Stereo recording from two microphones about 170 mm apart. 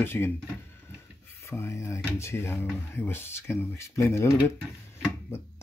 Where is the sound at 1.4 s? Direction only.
15° left (ahead or behind).